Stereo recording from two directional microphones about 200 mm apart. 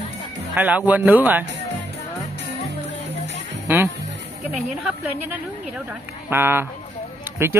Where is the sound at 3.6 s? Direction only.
10° right (ahead or behind).